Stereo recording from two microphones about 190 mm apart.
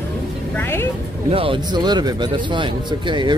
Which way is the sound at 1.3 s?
30° right (ahead or behind).